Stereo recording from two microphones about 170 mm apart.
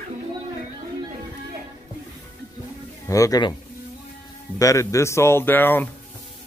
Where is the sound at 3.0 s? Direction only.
20° left (ahead or behind).